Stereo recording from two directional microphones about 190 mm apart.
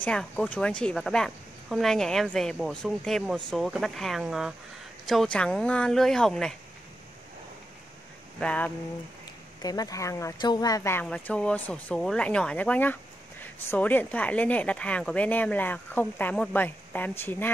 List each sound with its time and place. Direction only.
0.0 s a woman's voice: 5° left (ahead or behind)
8.4 s speech: 5° left (ahead or behind)
9.6 s a woman's voice: 20° left (ahead or behind)